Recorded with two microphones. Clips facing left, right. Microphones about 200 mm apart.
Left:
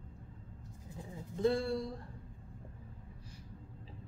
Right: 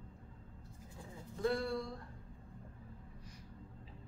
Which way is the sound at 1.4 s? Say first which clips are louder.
Left 4 dB; 25° left (ahead or behind).